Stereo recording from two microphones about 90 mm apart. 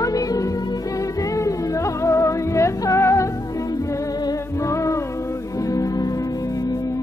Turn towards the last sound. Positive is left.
turn(degrees=40)  # may be behind; listen again after turning